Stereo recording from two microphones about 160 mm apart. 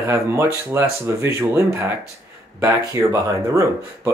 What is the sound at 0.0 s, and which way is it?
Speech, 15° right (ahead or behind).